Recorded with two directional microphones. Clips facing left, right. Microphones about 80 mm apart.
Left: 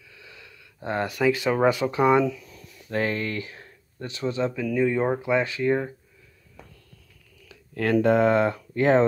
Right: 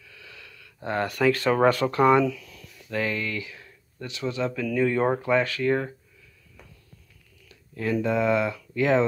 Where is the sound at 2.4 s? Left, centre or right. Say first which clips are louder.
Left 1 dB; left.